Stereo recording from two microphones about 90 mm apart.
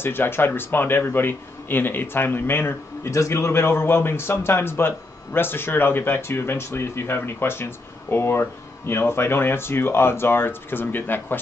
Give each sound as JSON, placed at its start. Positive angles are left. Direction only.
{"t": 0.0, "sound": "speech", "side_deg": 25}